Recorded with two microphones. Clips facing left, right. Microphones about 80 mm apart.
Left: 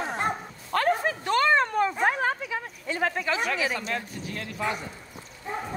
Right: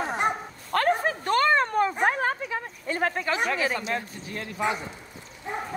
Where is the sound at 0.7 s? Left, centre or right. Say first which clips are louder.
Right 1 dB; right.